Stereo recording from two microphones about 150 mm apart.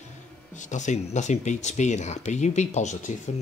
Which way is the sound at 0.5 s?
55° left (ahead or behind).